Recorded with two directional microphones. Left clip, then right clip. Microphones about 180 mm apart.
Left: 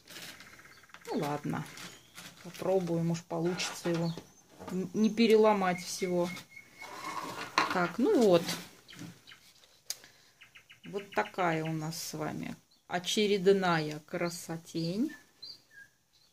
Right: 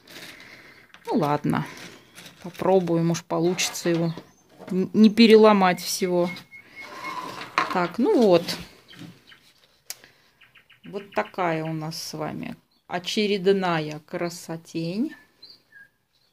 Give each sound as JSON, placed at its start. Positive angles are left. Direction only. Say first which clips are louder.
{"t": 1.2, "sound": "speech", "louder": "right 12 dB", "side_deg": -45}
{"t": 2.6, "sound": "speech", "louder": "right 10 dB", "side_deg": -50}
{"t": 7.5, "sound": "speech", "louder": "right 6 dB", "side_deg": -20}
{"t": 9.9, "sound": "bird", "louder": "right 2 dB", "side_deg": -20}
{"t": 10.9, "sound": "speech", "louder": "right 5 dB", "side_deg": -20}